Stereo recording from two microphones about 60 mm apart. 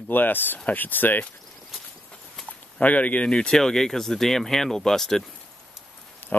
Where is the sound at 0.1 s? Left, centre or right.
Left.